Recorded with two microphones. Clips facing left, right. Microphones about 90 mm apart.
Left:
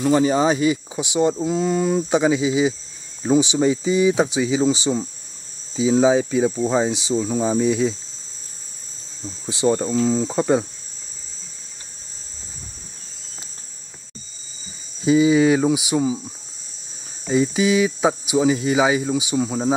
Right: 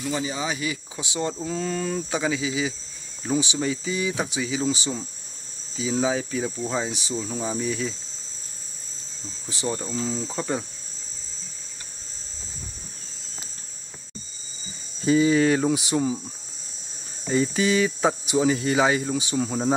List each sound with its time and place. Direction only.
0.0 s speech: 50° left (ahead or behind)
0.5 s speech: 25° left (ahead or behind)
9.2 s speech: 20° left (ahead or behind)
15.0 s speech: 10° left (ahead or behind)
17.3 s speech: 5° left (ahead or behind)